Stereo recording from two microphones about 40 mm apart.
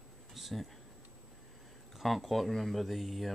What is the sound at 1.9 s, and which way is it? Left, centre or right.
Speech, centre.